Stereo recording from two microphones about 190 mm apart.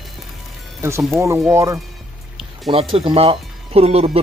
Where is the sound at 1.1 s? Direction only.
15° right (ahead or behind).